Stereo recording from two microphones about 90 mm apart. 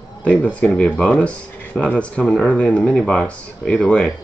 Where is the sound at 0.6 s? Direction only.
5° left (ahead or behind).